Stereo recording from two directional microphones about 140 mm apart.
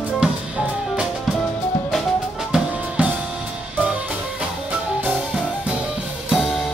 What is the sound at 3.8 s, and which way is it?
Music, 5° right (ahead or behind).